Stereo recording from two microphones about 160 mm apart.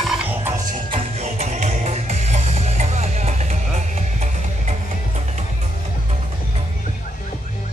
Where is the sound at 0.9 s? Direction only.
40° right (ahead or behind).